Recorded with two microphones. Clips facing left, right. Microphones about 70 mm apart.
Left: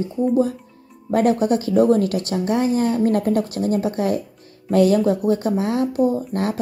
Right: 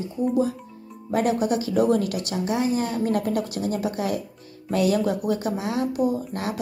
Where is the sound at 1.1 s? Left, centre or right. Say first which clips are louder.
Left 5 dB; left.